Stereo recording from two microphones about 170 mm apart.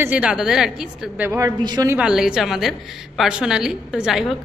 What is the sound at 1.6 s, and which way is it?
Speech, 25° right (ahead or behind).